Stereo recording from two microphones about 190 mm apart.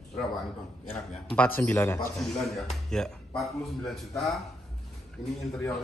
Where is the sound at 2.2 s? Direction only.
Centre (ahead or behind).